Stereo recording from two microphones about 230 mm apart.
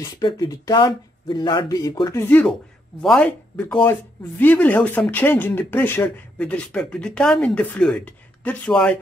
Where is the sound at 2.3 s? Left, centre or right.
Centre.